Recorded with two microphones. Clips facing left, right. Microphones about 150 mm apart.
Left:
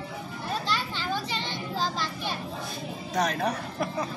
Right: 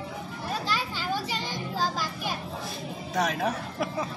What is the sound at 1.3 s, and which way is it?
Child singing, 10° right (ahead or behind).